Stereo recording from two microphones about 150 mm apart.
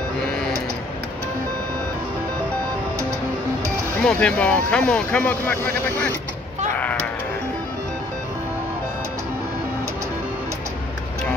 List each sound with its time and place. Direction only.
4.0 s speech: 5° left (ahead or behind)